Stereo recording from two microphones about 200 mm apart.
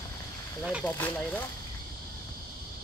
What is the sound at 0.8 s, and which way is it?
Speech, 10° left (ahead or behind).